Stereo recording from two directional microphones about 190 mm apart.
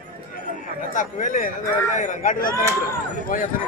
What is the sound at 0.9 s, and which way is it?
Speech, 45° left (ahead or behind).